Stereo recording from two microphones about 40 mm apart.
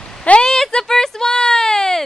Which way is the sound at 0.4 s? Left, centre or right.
Centre.